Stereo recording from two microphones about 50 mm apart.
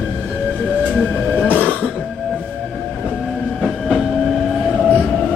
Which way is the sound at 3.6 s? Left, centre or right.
Centre.